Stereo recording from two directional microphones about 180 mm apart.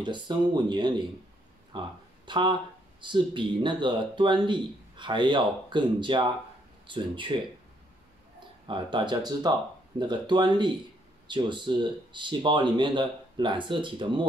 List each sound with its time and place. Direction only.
0.0 s speech: 25° right (ahead or behind)
1.7 s a sound: 25° right (ahead or behind)
3.0 s speech: 25° right (ahead or behind)
8.6 s speech: 25° right (ahead or behind)